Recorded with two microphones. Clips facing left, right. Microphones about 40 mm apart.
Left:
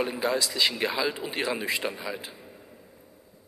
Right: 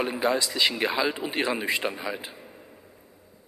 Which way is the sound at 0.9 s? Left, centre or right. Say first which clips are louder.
Right 2 dB; right.